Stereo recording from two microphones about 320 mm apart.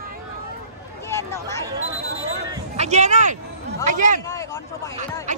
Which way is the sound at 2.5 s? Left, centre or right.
Right.